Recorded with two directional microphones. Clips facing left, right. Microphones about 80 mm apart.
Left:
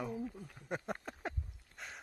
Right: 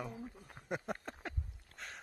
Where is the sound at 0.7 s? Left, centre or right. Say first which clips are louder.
Even; centre.